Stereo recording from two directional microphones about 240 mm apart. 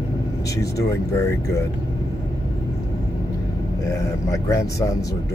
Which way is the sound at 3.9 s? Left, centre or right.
Centre.